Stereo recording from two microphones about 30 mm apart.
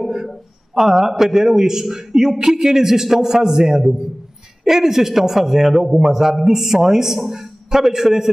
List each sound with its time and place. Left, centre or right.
0.7 s a man's voice: centre